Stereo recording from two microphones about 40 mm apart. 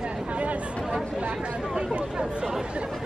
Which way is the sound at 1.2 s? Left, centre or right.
Right.